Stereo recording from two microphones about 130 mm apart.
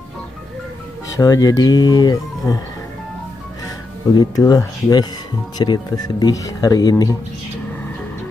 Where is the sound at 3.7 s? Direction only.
30° left (ahead or behind).